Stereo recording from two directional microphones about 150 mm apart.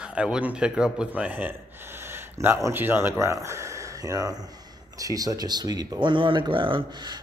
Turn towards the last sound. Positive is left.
turn(degrees=-30)  # may be behind; listen again after turning